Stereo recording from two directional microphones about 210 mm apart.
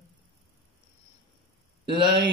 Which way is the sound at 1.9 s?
20° right (ahead or behind).